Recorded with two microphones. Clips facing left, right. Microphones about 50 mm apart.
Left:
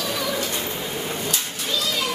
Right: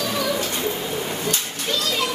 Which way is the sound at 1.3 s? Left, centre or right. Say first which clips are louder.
Right 1 dB; right.